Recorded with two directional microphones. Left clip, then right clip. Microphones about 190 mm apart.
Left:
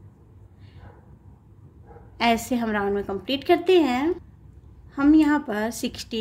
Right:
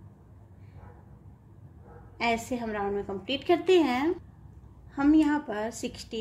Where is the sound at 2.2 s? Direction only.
25° left (ahead or behind).